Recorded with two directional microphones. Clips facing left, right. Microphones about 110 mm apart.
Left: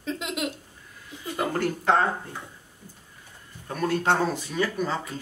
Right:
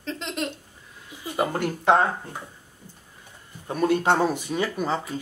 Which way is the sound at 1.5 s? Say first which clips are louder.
Right 2 dB; 20° right (ahead or behind).